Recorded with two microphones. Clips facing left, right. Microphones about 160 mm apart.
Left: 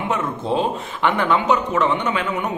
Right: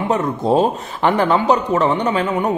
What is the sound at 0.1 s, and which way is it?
Speech, 40° right (ahead or behind).